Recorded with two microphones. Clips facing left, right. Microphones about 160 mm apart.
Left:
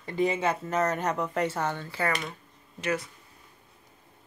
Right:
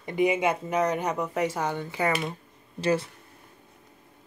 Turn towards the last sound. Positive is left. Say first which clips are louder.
# right 5 dB
turn(degrees=-30)  # may be behind; listen again after turning